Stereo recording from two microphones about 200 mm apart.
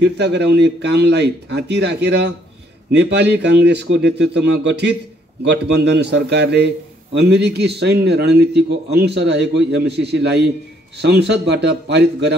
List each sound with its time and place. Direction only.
0.0 s a man's voice: 55° right (ahead or behind)